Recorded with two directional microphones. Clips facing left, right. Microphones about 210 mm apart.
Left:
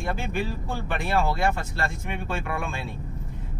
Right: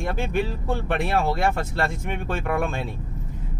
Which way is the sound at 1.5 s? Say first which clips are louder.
Right 5 dB; 55° right (ahead or behind).